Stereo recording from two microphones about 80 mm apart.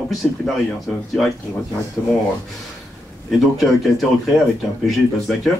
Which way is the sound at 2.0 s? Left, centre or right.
Left.